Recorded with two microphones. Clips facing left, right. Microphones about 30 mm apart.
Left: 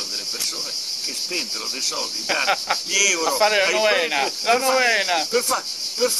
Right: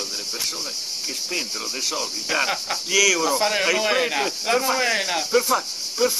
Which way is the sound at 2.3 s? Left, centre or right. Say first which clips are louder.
Even; centre.